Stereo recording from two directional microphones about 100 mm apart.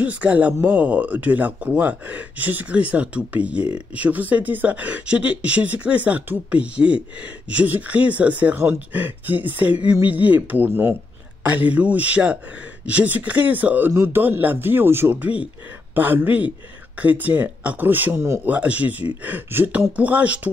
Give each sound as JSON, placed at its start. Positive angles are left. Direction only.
{"t": 0.0, "sound": "speech", "side_deg": -15}